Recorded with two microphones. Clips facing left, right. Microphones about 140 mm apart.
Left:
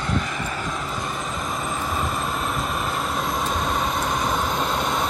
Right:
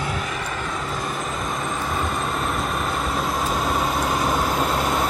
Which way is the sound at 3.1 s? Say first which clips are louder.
Right 1 dB; centre (ahead or behind).